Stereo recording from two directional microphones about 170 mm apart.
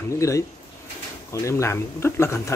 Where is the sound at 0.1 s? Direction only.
15° left (ahead or behind).